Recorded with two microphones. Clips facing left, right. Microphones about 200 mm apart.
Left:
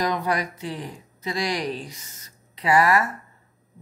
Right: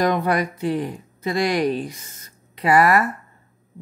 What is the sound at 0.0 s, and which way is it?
Speech, 55° right (ahead or behind).